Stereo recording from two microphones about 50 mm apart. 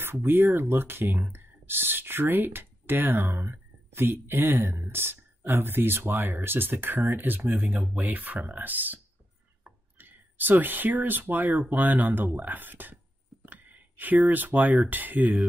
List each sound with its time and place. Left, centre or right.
0.0 s speech: right
7.7 s speech: right
13.5 s a sound: right
14.9 s speech: right